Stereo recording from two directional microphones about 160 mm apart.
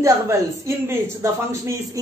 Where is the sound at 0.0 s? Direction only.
15° right (ahead or behind).